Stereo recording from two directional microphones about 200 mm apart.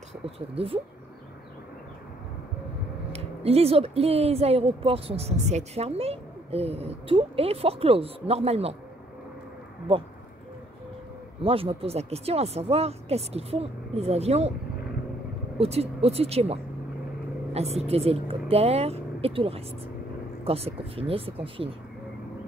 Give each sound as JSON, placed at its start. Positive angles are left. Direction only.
{"t": 3.1, "sound": "speech", "side_deg": -30}
{"t": 11.4, "sound": "speech", "side_deg": -30}
{"t": 15.5, "sound": "speech", "side_deg": -30}
{"t": 17.6, "sound": "speech", "side_deg": -30}